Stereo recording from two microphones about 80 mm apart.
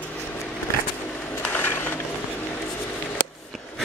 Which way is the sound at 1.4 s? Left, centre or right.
Left.